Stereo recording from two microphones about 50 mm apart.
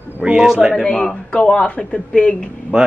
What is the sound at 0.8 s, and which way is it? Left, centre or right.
A woman's voice, centre.